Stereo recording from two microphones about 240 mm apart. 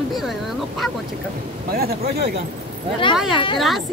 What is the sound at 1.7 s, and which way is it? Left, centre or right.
Speech, right.